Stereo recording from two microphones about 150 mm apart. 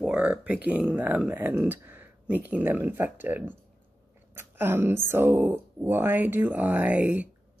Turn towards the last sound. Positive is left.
turn(degrees=-10)  # may be behind; listen again after turning